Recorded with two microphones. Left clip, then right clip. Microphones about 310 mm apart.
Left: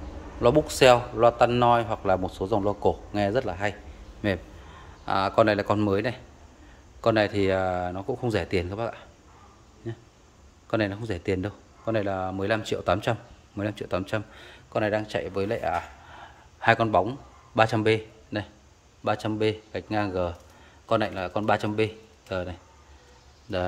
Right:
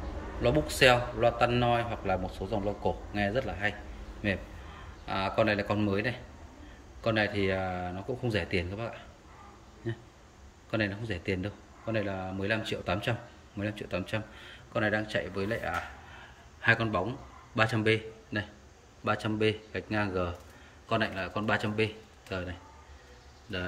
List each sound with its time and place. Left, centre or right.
0.4 s speech: centre
2.4 s speech: left
3.1 s a man's voice: centre